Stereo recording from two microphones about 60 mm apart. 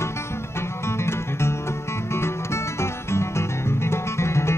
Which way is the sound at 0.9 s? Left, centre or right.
Left.